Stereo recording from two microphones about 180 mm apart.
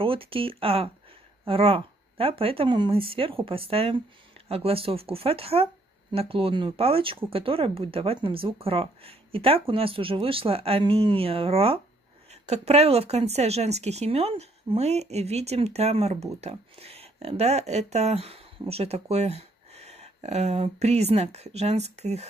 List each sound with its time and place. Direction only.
0.0 s speech: 30° right (ahead or behind)